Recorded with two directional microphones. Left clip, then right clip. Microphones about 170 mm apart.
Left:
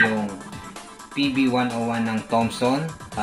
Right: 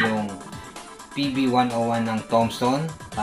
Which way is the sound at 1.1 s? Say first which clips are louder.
Even; centre (ahead or behind).